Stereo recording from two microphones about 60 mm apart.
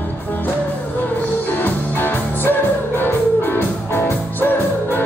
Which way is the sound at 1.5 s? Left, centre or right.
Left.